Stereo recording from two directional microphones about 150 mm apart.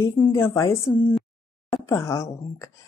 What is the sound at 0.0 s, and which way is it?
Speech, 20° left (ahead or behind).